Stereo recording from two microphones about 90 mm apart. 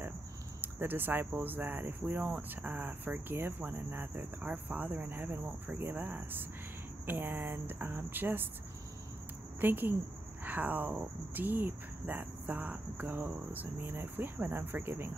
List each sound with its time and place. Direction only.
0.6 s speech: 20° right (ahead or behind)
9.6 s speech: 20° right (ahead or behind)